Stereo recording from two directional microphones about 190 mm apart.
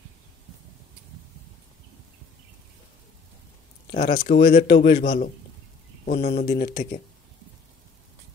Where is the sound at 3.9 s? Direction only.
45° left (ahead or behind).